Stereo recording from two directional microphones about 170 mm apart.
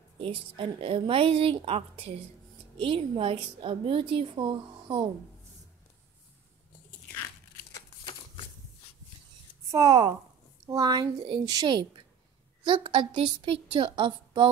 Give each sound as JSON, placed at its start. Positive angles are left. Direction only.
{"t": 0.2, "sound": "a woman's voice", "side_deg": -30}
{"t": 8.0, "sound": "shuffling cards", "side_deg": 30}
{"t": 9.7, "sound": "a woman's voice", "side_deg": -20}